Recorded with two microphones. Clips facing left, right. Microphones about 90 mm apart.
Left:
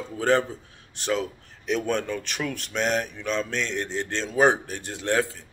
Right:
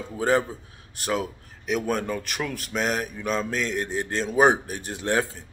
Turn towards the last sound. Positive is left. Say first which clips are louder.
# even
turn(degrees=-20)  # may be behind; listen again after turning